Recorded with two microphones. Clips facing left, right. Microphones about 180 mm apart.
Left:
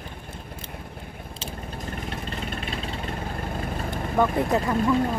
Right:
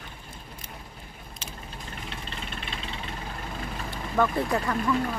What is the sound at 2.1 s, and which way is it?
Vehicle, 45° left (ahead or behind).